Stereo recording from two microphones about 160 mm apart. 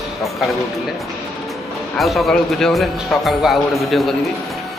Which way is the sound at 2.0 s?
Centre (ahead or behind).